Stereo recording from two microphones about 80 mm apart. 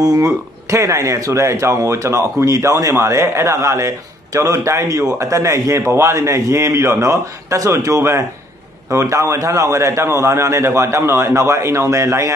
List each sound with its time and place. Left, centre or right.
0.0 s speech: right